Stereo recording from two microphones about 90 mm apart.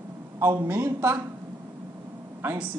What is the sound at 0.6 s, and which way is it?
Speech, 25° right (ahead or behind).